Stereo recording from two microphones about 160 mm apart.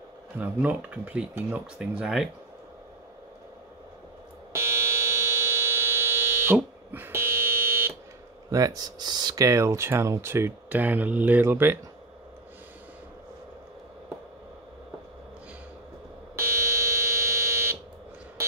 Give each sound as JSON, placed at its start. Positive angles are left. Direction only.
{"t": 0.4, "sound": "speech", "side_deg": -10}
{"t": 4.5, "sound": "fire alarm", "side_deg": -15}
{"t": 8.5, "sound": "speech", "side_deg": -20}
{"t": 16.5, "sound": "buzzer", "side_deg": -15}